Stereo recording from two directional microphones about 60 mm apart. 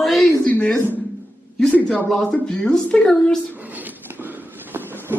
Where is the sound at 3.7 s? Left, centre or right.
Right.